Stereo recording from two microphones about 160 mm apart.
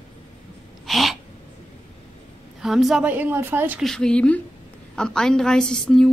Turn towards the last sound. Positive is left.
turn(degrees=5)  # may be behind; listen again after turning